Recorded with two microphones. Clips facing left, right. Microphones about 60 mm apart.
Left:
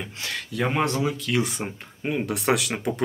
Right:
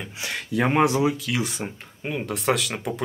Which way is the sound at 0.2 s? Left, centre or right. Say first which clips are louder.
Right 3 dB; right.